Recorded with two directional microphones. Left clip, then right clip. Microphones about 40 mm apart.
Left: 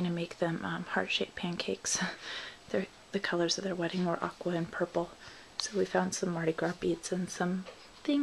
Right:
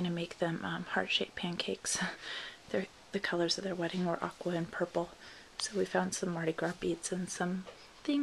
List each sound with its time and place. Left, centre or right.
0.0 s a sound: right
0.3 s speech: right
6.6 s speech: centre